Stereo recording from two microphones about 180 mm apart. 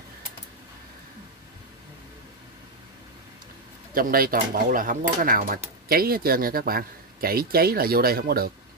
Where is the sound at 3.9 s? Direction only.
55° right (ahead or behind).